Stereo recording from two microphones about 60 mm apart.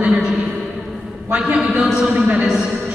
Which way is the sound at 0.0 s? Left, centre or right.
Centre.